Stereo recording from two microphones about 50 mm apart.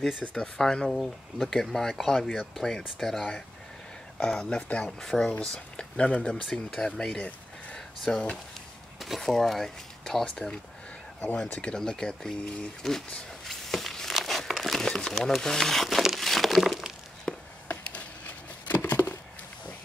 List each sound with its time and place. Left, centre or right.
0.2 s speech: left; by 3.4 s centre
4.2 s speech: centre
4.6 s speech: left
5.0 s speech: centre
6.2 s speech: centre
9.0 s speech: centre
10.2 s speech: centre
11.6 s speech: centre
13.5 s a sound: centre
14.2 s crumpling: centre
17.3 s a sound: centre
17.8 s a sound: left